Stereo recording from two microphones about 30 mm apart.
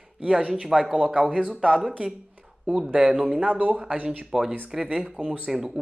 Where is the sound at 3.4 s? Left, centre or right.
Right.